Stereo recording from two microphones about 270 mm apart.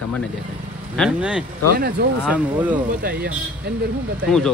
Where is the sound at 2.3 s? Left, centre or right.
Centre.